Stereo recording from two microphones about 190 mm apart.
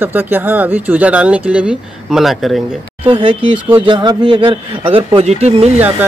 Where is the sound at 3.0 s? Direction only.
25° right (ahead or behind).